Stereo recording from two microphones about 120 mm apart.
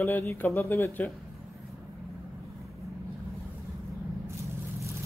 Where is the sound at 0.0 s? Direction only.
20° left (ahead or behind).